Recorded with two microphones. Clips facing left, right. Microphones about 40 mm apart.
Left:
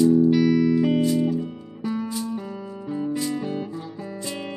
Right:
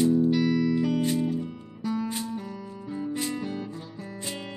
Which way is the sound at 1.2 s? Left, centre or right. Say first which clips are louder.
Left 5 dB; left.